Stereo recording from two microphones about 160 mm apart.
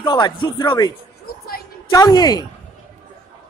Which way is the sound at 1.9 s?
25° left (ahead or behind).